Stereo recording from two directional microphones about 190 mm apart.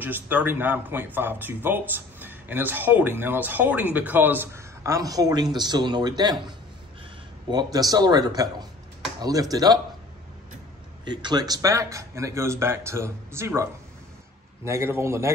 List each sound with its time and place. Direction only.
0.0 s speech: 10° right (ahead or behind)
7.5 s speech: 20° right (ahead or behind)
11.2 s speech: 20° right (ahead or behind)